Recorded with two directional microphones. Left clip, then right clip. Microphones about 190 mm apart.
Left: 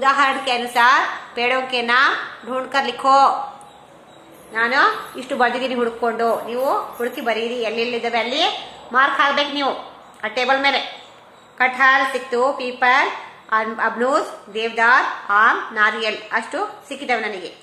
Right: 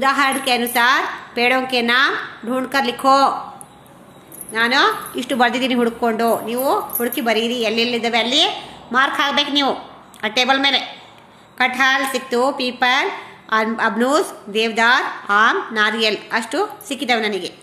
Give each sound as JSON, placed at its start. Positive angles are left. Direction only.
{"t": 0.0, "sound": "a woman's voice", "side_deg": -40}
{"t": 4.5, "sound": "a woman's voice", "side_deg": -45}